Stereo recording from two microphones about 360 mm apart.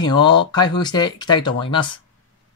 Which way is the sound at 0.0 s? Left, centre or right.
Centre.